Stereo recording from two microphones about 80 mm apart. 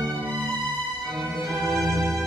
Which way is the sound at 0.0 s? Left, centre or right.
Right.